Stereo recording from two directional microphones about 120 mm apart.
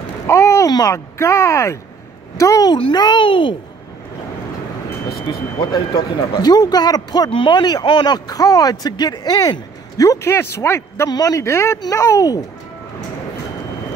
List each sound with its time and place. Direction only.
0.3 s speech: 25° left (ahead or behind); by 3.5 s 45° left (ahead or behind)
5.3 s speech: 35° left (ahead or behind)